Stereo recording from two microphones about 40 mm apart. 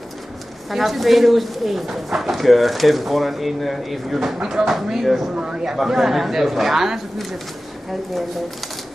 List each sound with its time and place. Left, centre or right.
0.7 s speech: centre
5.3 s a man's voice: right
5.7 s speech: centre